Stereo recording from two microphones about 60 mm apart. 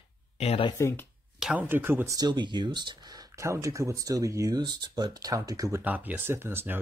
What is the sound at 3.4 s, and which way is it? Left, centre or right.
Speech, right.